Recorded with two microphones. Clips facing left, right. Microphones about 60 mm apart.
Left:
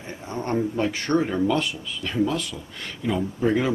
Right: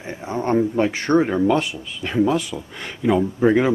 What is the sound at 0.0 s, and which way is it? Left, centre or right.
A man's voice, centre.